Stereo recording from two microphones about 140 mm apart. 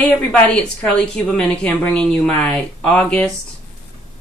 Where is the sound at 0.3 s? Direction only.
10° left (ahead or behind).